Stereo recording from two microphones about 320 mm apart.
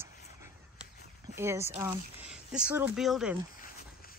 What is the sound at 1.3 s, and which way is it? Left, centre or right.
Speech, centre.